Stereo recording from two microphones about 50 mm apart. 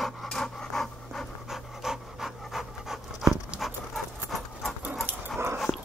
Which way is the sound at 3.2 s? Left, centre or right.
Centre.